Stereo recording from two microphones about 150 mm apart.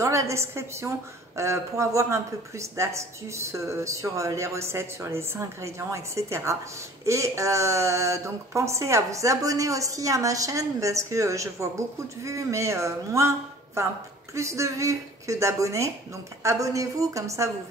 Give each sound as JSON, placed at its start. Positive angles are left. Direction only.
{"t": 0.0, "sound": "a woman's voice", "side_deg": -20}
{"t": 14.3, "sound": "a woman's voice", "side_deg": -20}